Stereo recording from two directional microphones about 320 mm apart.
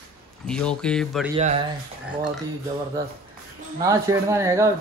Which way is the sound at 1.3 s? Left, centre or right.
Centre.